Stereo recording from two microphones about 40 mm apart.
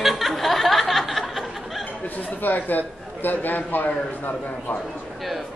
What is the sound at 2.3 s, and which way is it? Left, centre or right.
A man's voice, left.